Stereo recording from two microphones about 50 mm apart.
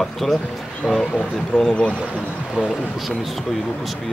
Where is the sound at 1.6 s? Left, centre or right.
Centre.